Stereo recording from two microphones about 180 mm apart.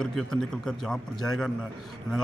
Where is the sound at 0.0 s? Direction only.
5° left (ahead or behind).